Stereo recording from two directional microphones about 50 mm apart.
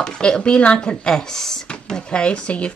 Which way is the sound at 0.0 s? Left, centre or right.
Centre.